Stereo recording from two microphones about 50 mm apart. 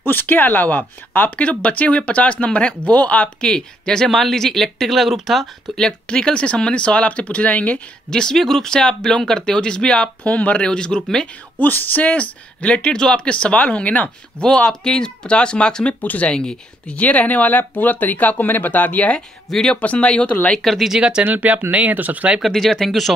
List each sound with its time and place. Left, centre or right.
0.0 s speech: left
1.4 s speech: left
3.4 s speech: centre
6.0 s speech: centre
8.1 s speech: centre
10.2 s speech: left
10.7 s speech: centre
11.5 s speech: left; by 15.9 s centre
15.9 s speech: left
16.3 s speech: centre
16.9 s speech: left
20.5 s speech: centre
21.2 s speech: right
22.5 s speech: centre